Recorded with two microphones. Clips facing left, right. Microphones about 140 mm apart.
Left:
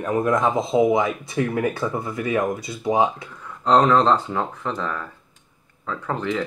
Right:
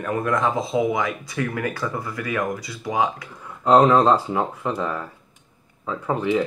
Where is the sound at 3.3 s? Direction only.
10° right (ahead or behind).